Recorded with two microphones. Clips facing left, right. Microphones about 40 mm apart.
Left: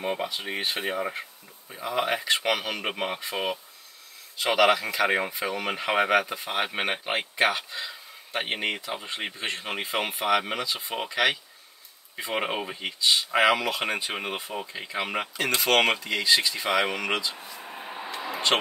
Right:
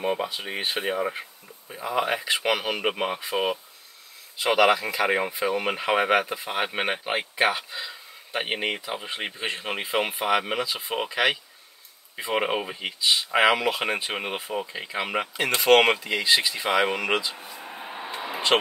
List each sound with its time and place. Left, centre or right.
0.0 s speech: centre
15.3 s speech: centre
17.4 s vehicle: centre
18.2 s a sound: centre